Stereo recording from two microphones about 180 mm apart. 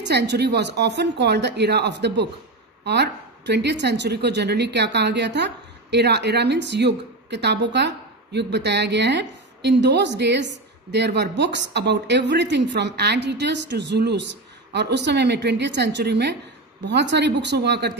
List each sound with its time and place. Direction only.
0.0 s speech: 70° right (ahead or behind)